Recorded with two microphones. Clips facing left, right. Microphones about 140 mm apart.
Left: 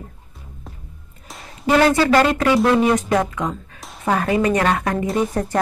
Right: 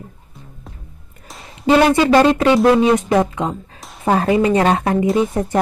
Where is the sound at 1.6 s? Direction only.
25° right (ahead or behind).